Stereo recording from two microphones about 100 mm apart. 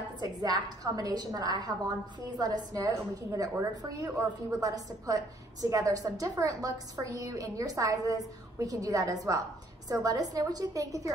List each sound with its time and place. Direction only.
0.4 s a woman's voice: 40° right (ahead or behind)